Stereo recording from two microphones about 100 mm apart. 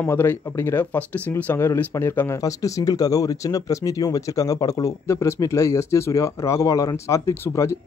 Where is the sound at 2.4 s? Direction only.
35° left (ahead or behind).